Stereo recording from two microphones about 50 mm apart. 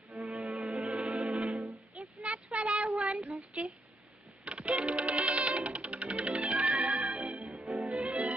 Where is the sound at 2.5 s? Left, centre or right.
Right.